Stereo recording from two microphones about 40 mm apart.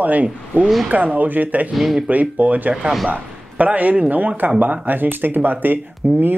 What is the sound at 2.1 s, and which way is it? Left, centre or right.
Speech, right.